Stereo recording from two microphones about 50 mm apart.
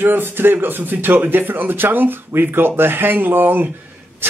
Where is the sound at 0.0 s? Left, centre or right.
Right.